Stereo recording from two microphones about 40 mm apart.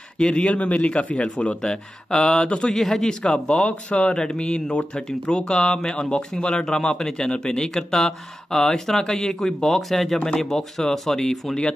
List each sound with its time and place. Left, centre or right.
0.2 s speech: left
1.6 s speech: centre
2.7 s speech: centre
3.2 s speech: left
4.2 s speech: centre